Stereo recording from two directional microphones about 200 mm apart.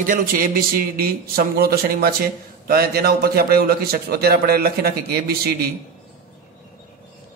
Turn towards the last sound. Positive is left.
turn(degrees=-50)  # may be behind; listen again after turning